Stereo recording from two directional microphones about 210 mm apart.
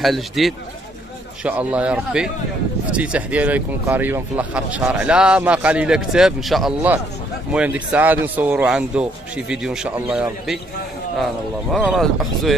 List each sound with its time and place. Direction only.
0.0 s speech: centre (ahead or behind)
11.7 s speech: centre (ahead or behind)